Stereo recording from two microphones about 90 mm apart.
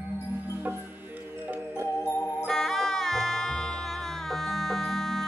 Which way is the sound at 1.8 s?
25° left (ahead or behind).